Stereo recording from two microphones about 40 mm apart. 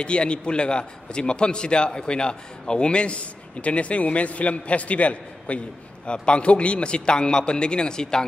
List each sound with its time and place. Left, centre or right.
0.0 s a man's voice: left
6.0 s a man's voice: left